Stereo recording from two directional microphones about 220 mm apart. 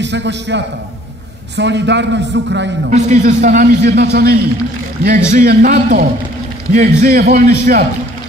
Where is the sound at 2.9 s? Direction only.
35° right (ahead or behind).